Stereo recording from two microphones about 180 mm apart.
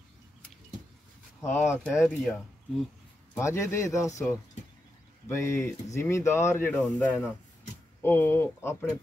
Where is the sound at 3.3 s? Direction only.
15° left (ahead or behind).